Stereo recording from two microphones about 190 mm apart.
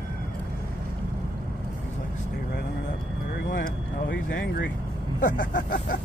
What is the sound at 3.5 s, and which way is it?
Vehicle, 55° left (ahead or behind).